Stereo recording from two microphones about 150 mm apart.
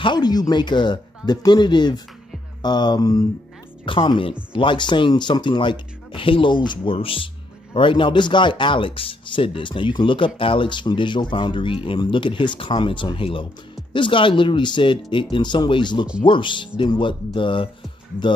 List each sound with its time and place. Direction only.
0.0 s speech: 30° left (ahead or behind)